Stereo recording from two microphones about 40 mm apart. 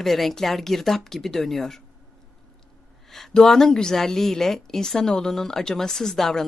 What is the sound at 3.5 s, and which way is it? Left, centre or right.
A woman's voice, centre.